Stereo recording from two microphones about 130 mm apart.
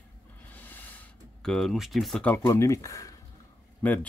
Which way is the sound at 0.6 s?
15° left (ahead or behind).